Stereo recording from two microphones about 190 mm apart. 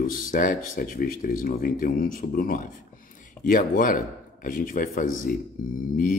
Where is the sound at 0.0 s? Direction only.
45° left (ahead or behind).